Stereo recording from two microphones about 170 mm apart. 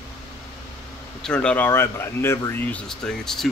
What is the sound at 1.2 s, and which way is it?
Speech, 5° left (ahead or behind).